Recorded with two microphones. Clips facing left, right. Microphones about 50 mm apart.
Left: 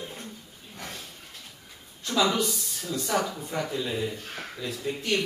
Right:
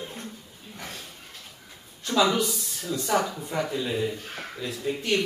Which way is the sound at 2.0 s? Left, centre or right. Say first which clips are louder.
Right 2 dB; centre.